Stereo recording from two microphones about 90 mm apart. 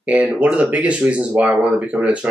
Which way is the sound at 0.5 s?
15° right (ahead or behind).